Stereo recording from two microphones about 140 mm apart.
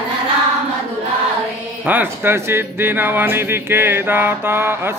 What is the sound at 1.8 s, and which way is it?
Speech, 15° right (ahead or behind).